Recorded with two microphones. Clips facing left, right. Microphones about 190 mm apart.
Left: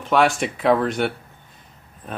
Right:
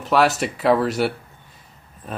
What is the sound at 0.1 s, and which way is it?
Speech, 5° right (ahead or behind).